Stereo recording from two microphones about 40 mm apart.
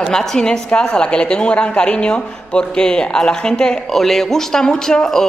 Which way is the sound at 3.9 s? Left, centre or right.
Centre.